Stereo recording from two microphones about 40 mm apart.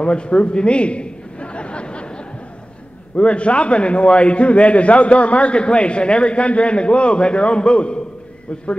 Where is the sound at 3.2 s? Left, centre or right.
Left.